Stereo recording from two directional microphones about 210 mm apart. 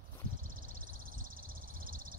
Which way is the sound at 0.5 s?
40° right (ahead or behind).